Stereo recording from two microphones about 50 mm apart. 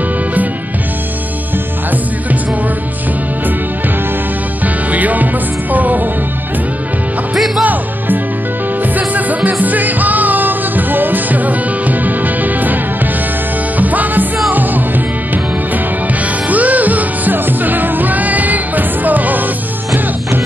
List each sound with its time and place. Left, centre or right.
4.9 s music: right
7.3 s music: centre
8.9 s music: right
16.4 s music: right